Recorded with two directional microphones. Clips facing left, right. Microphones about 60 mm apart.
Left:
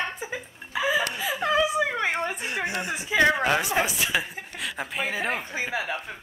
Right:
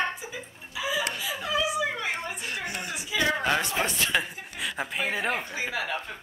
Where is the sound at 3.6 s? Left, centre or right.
Centre.